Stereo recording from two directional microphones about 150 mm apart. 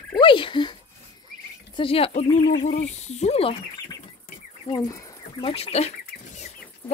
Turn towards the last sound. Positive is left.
turn(degrees=45)  # may be behind; listen again after turning